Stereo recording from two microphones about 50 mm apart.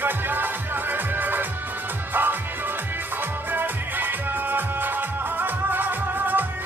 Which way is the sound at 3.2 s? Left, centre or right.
Right.